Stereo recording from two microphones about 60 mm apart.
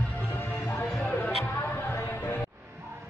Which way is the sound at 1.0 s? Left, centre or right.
Left.